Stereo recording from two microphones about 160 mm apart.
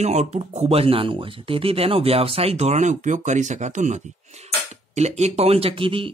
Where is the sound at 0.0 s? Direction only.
45° right (ahead or behind).